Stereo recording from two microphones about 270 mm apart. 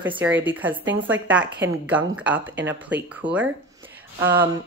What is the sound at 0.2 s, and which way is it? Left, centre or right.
A woman's voice, centre.